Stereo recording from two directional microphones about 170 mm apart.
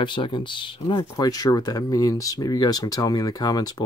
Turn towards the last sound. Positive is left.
turn(degrees=20)  # may be behind; listen again after turning